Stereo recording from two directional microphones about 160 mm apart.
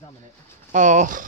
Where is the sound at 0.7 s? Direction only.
50° right (ahead or behind).